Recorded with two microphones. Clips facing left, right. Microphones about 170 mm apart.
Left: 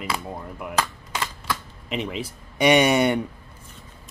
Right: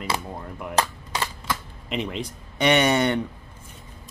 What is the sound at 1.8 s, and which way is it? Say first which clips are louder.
Speech: even; centre (ahead or behind).